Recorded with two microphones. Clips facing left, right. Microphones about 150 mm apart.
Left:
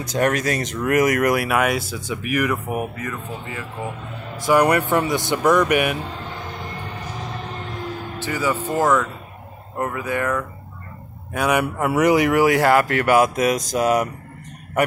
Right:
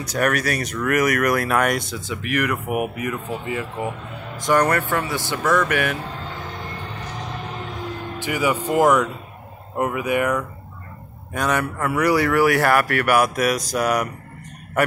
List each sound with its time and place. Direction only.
0.0 s speech: 20° left (ahead or behind)
1.4 s speech: 5° left (ahead or behind)
2.7 s speech: 15° right (ahead or behind)
4.4 s speech: 10° left (ahead or behind)
8.2 s speech: 15° right (ahead or behind)
11.3 s speech: 10° left (ahead or behind)